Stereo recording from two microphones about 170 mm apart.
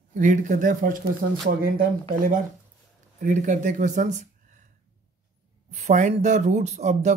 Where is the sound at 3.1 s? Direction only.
50° right (ahead or behind).